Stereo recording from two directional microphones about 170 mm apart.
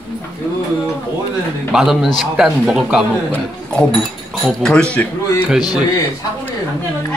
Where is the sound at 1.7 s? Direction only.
Centre (ahead or behind).